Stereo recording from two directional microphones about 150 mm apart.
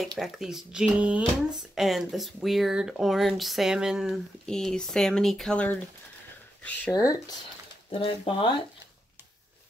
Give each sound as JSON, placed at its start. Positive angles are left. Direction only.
{"t": 0.2, "sound": "speech", "side_deg": 0}
{"t": 6.9, "sound": "speech", "side_deg": 25}
{"t": 8.0, "sound": "speech", "side_deg": 35}